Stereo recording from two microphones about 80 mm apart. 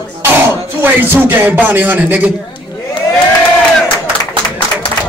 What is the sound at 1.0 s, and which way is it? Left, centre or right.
Speech, right.